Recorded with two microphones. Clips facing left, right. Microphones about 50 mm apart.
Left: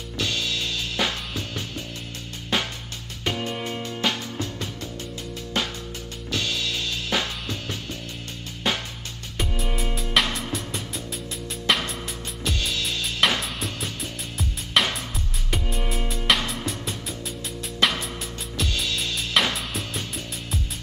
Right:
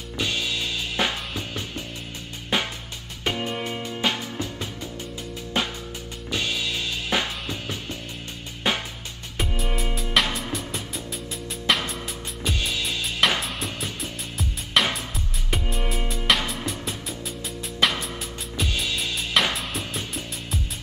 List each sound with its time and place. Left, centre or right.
0.2 s music: centre
18.6 s music: centre